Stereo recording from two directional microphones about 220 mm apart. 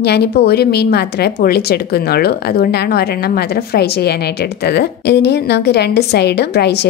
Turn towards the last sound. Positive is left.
turn(degrees=50)  # may be behind; listen again after turning